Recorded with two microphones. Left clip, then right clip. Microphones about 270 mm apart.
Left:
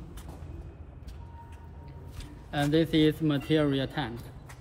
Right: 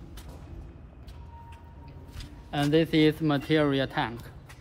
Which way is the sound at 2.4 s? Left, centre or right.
Right.